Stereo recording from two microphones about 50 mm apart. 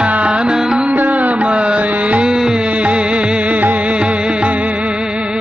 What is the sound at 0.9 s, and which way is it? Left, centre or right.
Music, right.